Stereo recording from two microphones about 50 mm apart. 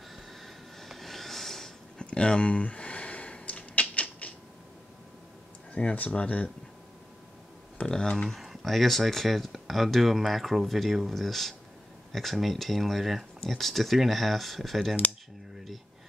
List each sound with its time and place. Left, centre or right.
0.1 s snort: centre
2.0 s a sound: centre
5.8 s speech: left
7.8 s speech: left
8.3 s speech: centre